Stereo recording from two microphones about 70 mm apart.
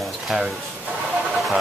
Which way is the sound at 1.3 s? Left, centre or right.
Centre.